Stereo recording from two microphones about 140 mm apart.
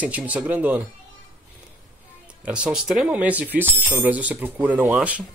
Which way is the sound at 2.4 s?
10° right (ahead or behind).